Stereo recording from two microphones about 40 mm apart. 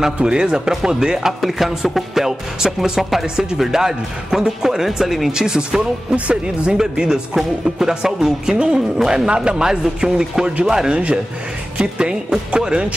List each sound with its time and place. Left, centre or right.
0.0 s speech: right
1.4 s speech: centre
5.3 s speech: centre
6.1 s speech: right
10.9 s speech: right